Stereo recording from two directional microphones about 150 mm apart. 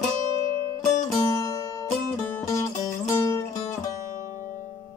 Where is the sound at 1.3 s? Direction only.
20° left (ahead or behind).